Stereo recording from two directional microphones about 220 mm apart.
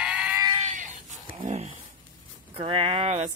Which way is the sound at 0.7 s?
35° right (ahead or behind).